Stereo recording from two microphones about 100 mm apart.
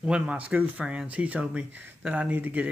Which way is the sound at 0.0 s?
10° right (ahead or behind).